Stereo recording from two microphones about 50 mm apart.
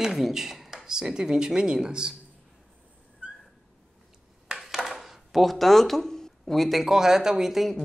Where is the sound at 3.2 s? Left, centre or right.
Right.